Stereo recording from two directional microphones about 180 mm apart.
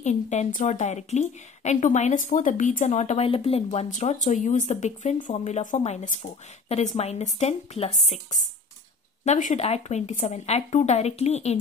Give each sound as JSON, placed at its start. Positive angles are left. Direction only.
{"t": 0.0, "sound": "speech", "side_deg": 40}